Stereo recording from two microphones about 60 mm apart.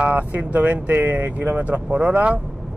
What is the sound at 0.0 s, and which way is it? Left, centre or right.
Speech, right.